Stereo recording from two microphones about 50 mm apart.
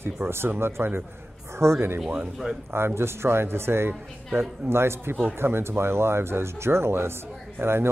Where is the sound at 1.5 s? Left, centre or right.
Right.